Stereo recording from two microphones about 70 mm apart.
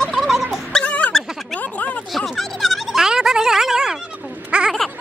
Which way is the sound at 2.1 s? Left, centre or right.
Centre.